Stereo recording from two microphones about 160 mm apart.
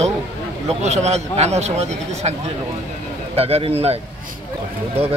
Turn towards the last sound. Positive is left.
turn(degrees=-40)  # may be behind; listen again after turning